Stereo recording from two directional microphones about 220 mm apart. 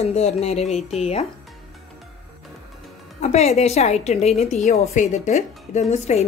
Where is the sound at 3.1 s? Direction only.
30° left (ahead or behind).